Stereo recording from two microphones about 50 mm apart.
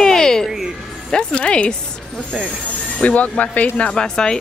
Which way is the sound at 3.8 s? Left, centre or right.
Centre.